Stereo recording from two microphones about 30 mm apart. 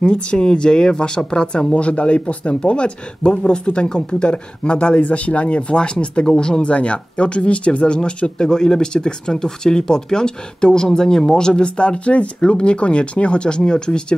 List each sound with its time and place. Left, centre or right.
0.0 s speech: left
1.8 s speech: left
5.0 s speech: left
6.2 s speech: left
6.6 s speech: left